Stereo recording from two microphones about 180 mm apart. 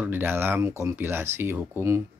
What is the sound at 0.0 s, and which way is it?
Speech, 10° right (ahead or behind).